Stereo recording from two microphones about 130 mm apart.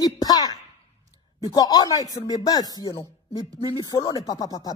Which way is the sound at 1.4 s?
30° left (ahead or behind).